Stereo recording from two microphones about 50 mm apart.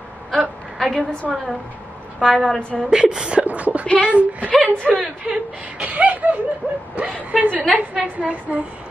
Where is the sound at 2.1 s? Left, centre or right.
Centre.